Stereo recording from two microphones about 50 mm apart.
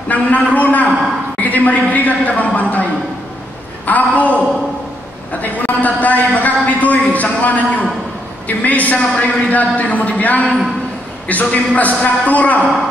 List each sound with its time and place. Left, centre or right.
0.1 s a man's voice: left
5.4 s a man's voice: left